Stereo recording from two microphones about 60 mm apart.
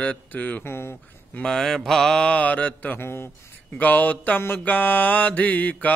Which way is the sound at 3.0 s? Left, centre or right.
Left.